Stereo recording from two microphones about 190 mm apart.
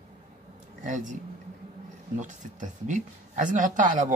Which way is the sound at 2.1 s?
40° right (ahead or behind).